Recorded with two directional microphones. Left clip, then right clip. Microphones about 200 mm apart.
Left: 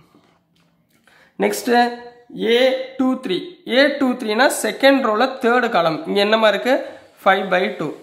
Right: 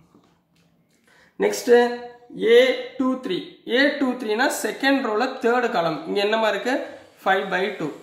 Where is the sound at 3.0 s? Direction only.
40° left (ahead or behind).